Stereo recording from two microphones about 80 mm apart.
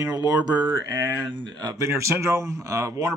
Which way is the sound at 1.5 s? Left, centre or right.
Right.